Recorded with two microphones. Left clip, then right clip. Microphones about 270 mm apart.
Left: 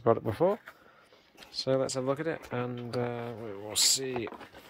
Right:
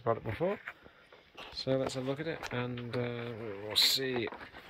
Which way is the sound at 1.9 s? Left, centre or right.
Centre.